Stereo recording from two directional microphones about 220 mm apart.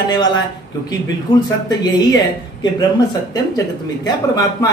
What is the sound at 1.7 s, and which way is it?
A woman's voice, 20° left (ahead or behind).